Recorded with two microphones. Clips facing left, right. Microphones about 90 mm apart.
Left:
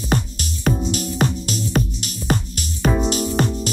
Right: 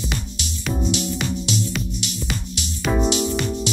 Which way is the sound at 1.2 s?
45° left (ahead or behind).